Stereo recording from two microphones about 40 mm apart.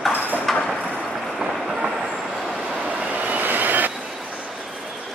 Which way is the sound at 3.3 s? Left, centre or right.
Right.